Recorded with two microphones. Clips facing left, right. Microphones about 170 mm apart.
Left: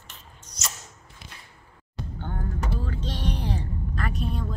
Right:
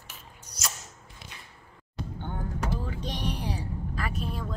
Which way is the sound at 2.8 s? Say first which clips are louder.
Left 2 dB; 15° right (ahead or behind).